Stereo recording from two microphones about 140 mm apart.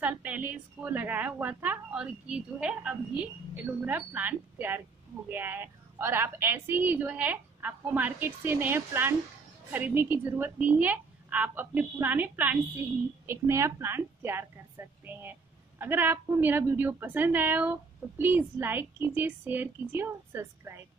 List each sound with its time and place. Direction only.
0.0 s a woman's voice: 10° right (ahead or behind)